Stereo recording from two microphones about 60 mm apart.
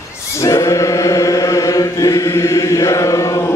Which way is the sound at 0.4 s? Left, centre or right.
Left.